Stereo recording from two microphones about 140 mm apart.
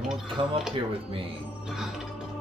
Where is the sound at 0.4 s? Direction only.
40° right (ahead or behind).